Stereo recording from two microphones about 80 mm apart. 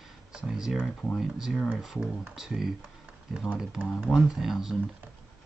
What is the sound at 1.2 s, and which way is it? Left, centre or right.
Speech, centre.